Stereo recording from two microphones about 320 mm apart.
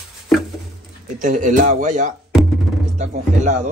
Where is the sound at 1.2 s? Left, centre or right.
Right.